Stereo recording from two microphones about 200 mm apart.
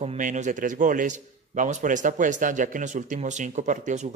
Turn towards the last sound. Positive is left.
turn(degrees=-40)  # may be behind; listen again after turning